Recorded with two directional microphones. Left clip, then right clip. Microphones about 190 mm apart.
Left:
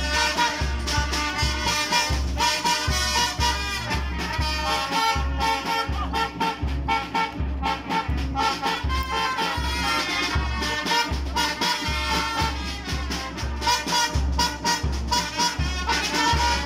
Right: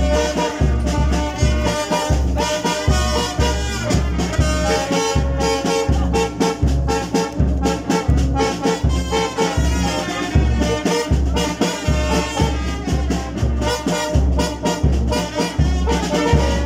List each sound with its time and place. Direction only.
0.1 s music: 45° right (ahead or behind)
13.7 s music: 45° right (ahead or behind)